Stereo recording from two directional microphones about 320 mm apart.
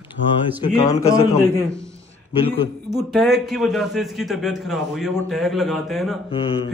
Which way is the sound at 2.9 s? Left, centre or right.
Centre.